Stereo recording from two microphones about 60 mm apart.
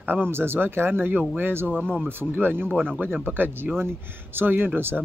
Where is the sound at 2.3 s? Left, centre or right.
Right.